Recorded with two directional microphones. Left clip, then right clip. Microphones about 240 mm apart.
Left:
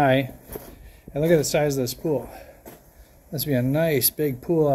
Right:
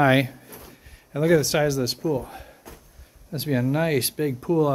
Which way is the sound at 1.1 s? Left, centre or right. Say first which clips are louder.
Even; centre.